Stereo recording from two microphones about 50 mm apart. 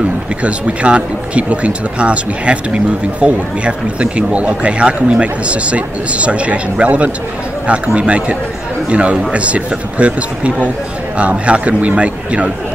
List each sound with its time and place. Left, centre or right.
0.4 s speech: right